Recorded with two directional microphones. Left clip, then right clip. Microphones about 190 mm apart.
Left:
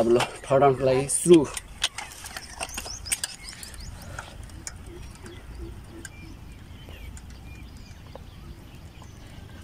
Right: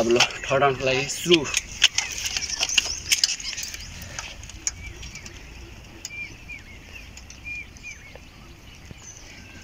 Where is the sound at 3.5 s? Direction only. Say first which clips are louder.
Right 11 dB; centre (ahead or behind).